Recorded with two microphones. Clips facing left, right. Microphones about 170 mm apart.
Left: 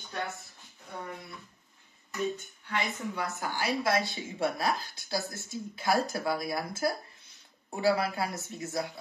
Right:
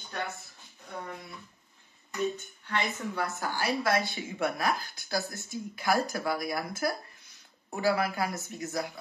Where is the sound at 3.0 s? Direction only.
20° left (ahead or behind).